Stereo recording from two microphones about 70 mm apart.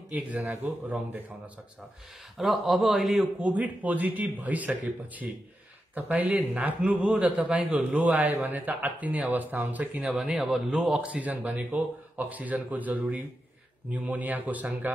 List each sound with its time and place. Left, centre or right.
0.1 s speech: right
2.3 s a man's voice: centre
3.3 s speech: centre
10.0 s speech: centre; by 14.7 s right